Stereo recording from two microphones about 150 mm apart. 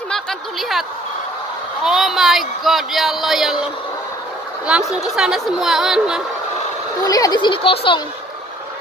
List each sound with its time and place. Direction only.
0.1 s a sound: centre (ahead or behind)
1.8 s speech: centre (ahead or behind)
5.1 s speech: 5° right (ahead or behind)
7.1 s speech: 25° left (ahead or behind)